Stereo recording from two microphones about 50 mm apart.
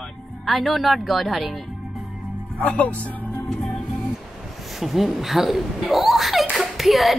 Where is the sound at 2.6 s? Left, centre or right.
Left.